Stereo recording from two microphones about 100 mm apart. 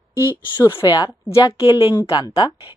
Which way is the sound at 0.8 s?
45° left (ahead or behind).